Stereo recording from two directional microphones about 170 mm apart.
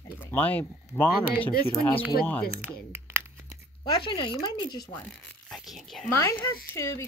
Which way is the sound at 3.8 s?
30° left (ahead or behind).